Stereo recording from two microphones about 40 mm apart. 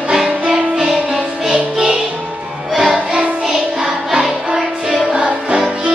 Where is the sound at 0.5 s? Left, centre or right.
Centre.